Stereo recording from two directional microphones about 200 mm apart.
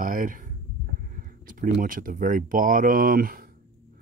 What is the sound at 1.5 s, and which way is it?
Speech, 45° right (ahead or behind).